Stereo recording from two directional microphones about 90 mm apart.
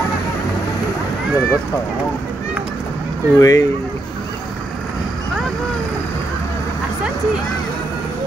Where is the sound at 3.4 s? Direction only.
40° left (ahead or behind).